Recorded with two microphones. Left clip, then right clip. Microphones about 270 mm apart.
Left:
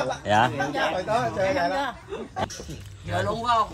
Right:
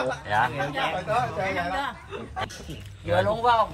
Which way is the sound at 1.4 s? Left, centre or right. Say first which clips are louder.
Left 3 dB; left.